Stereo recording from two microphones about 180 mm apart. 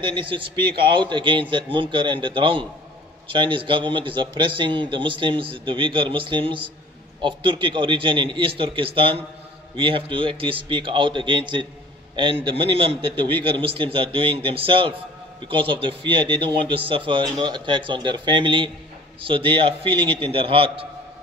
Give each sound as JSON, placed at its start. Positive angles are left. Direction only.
{"t": 0.0, "sound": "a man's voice", "side_deg": -30}